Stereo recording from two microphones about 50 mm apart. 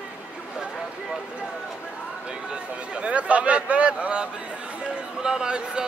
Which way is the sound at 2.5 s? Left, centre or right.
Right.